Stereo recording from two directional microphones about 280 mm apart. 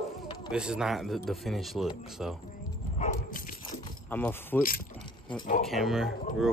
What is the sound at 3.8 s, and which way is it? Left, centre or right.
Keys jangling, centre.